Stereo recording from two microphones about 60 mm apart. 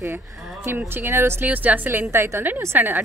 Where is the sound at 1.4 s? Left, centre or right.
Right.